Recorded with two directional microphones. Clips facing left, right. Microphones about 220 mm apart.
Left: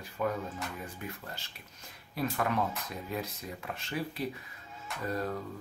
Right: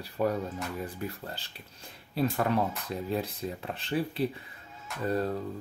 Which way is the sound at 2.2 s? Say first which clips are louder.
Right 4 dB; 30° right (ahead or behind).